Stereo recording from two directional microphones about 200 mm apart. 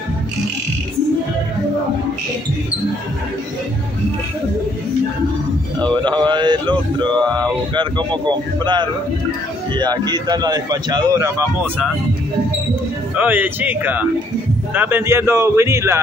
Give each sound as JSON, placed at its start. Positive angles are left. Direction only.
{"t": 5.8, "sound": "speech", "side_deg": -20}
{"t": 13.1, "sound": "a man's voice", "side_deg": -10}